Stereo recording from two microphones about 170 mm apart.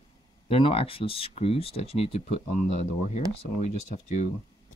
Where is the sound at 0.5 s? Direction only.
35° left (ahead or behind).